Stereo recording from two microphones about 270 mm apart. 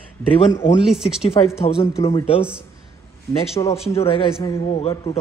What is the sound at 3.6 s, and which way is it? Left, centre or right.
A man's voice, centre.